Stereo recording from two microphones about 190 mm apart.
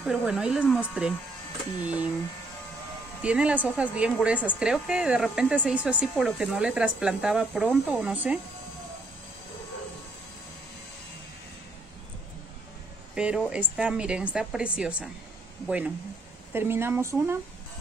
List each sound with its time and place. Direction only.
0.0 s speech: centre (ahead or behind)
3.2 s speech: 5° right (ahead or behind)
13.1 s speech: 5° right (ahead or behind)